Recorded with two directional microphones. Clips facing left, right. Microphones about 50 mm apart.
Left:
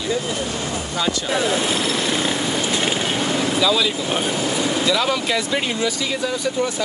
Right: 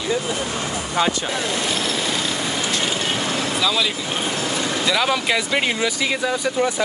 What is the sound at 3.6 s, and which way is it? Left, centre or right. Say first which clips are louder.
Speech: left 2 dB; centre.